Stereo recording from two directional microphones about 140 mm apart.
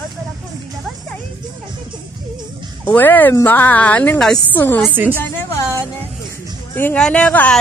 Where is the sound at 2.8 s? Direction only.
15° left (ahead or behind).